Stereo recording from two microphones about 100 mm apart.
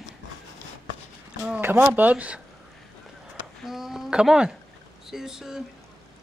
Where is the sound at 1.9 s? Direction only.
15° right (ahead or behind).